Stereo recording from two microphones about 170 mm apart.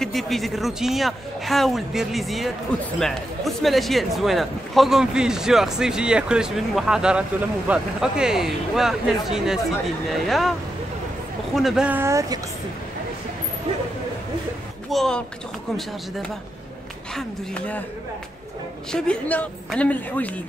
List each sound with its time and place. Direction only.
0.0 s speech: centre (ahead or behind)
11.5 s speech: centre (ahead or behind); by 12.4 s 20° right (ahead or behind)
14.9 s speech: 5° left (ahead or behind)
17.1 s a woman's voice: 10° left (ahead or behind)
18.9 s a woman's voice: 5° left (ahead or behind)